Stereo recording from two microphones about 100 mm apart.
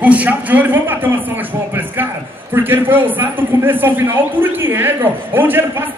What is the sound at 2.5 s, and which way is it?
A man's voice, 20° right (ahead or behind).